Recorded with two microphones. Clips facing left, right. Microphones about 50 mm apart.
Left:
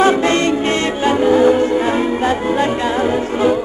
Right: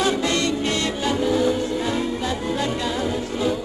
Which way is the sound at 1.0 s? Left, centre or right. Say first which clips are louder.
Left 9 dB; left.